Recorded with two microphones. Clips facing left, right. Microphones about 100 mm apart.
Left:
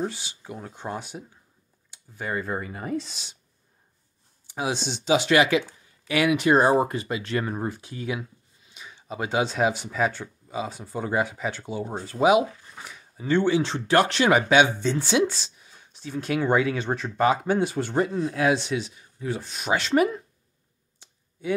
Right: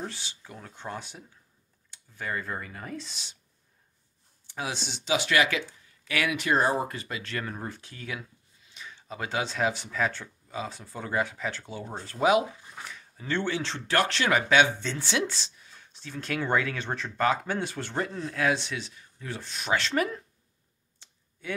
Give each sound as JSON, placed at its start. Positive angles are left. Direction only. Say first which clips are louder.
{"t": 0.0, "sound": "speech", "louder": "left 7 dB", "side_deg": 10}
{"t": 4.5, "sound": "speech", "louder": "left 6 dB", "side_deg": 15}
{"t": 21.0, "sound": "a sound", "louder": "left 9 dB", "side_deg": 10}